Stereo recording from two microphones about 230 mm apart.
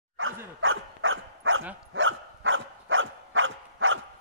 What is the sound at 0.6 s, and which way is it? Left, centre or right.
Dog, right.